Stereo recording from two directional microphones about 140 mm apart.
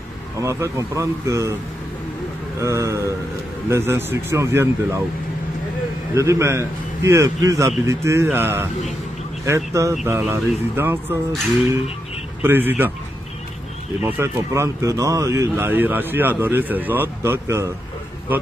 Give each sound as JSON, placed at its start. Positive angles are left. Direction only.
{"t": 0.4, "sound": "a man's voice", "side_deg": -20}
{"t": 2.6, "sound": "a man's voice", "side_deg": -20}
{"t": 6.1, "sound": "a man's voice", "side_deg": -20}
{"t": 12.4, "sound": "speech", "side_deg": -15}
{"t": 14.0, "sound": "speech", "side_deg": -15}